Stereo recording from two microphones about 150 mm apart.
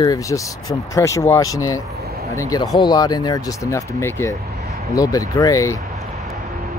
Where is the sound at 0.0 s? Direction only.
25° left (ahead or behind).